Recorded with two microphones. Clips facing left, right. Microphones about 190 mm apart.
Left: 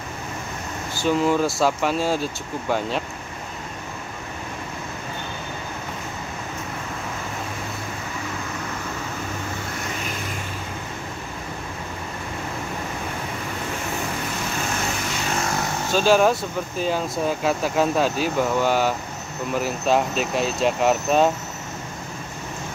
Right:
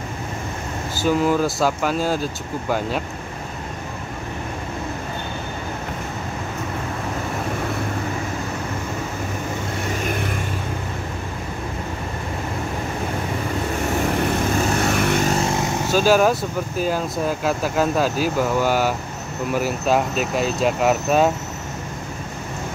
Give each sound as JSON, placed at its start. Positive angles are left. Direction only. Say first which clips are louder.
{"t": 0.9, "sound": "speech", "louder": "right 1 dB", "side_deg": -5}
{"t": 15.0, "sound": "vehicle", "louder": "right 9 dB", "side_deg": -60}
{"t": 15.2, "sound": "vehicle", "louder": "right 5 dB", "side_deg": -35}
{"t": 15.9, "sound": "speech", "louder": "right 1 dB", "side_deg": -5}